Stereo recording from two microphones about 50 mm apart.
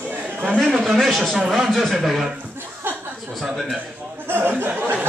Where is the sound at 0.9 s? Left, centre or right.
Centre.